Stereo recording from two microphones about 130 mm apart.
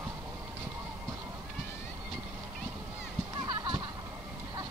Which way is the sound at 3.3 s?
30° right (ahead or behind).